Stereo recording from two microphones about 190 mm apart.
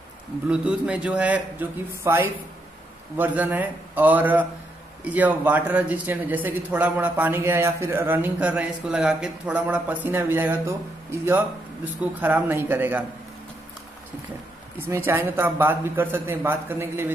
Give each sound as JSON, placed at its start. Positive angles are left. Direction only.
{"t": 0.5, "sound": "a man's voice", "side_deg": -5}
{"t": 14.9, "sound": "a man's voice", "side_deg": -10}